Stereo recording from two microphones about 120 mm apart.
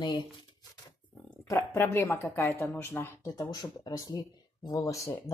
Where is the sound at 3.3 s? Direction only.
35° left (ahead or behind).